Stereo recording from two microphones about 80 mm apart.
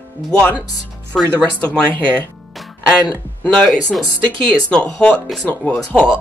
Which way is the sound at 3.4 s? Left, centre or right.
Centre.